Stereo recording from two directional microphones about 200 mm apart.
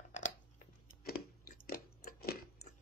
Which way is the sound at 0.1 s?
35° left (ahead or behind).